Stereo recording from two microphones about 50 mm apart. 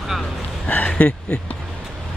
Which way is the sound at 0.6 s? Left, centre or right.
Left.